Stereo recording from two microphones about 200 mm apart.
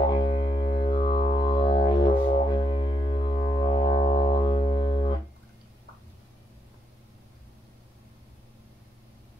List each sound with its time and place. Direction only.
0.0 s music: 25° left (ahead or behind)